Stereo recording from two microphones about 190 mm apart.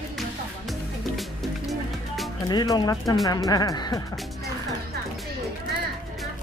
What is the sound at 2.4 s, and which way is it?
Speech, 20° left (ahead or behind).